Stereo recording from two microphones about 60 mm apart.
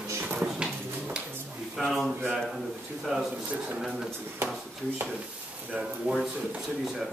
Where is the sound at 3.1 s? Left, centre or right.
Centre.